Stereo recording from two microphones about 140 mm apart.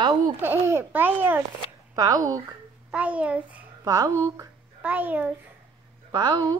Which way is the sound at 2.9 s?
10° right (ahead or behind).